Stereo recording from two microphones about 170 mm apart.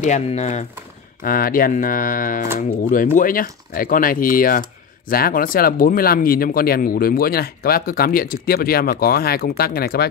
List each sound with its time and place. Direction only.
0.0 s speech: 45° left (ahead or behind)
1.2 s speech: 55° left (ahead or behind)